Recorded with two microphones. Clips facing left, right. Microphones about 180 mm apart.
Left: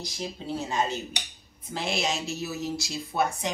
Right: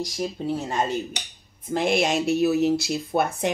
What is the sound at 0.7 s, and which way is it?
Speech, 55° right (ahead or behind).